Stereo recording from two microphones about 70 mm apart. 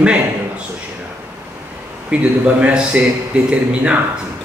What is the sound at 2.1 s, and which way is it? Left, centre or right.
Speech, centre.